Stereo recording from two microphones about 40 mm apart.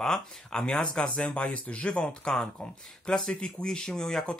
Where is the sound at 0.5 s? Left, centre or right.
Centre.